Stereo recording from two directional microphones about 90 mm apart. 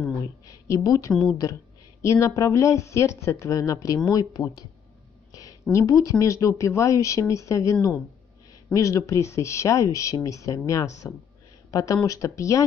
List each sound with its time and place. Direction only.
0.7 s a woman's voice: 35° left (ahead or behind)
8.7 s speech: 10° left (ahead or behind)
9.0 s a woman's voice: 35° left (ahead or behind)